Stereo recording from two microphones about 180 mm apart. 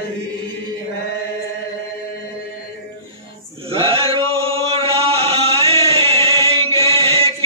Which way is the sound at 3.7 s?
30° right (ahead or behind).